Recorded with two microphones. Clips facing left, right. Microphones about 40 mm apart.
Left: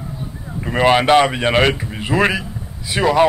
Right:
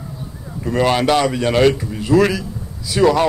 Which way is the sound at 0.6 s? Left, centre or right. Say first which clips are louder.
Left 2 dB; left.